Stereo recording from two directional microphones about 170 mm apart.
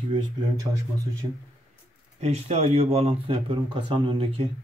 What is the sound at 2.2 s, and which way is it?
Speech, 40° right (ahead or behind).